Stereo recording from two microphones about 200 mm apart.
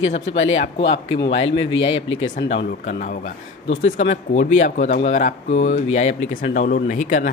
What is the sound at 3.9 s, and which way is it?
Speech, 35° left (ahead or behind).